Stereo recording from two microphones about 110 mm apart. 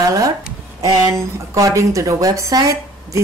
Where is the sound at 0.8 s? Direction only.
30° right (ahead or behind).